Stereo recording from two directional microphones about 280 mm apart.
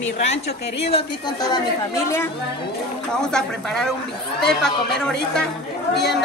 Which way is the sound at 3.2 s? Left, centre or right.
Centre.